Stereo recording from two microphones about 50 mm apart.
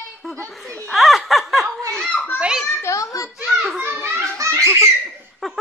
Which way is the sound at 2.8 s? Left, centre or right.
Left.